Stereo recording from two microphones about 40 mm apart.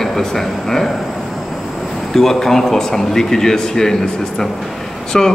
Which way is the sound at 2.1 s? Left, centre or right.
Centre.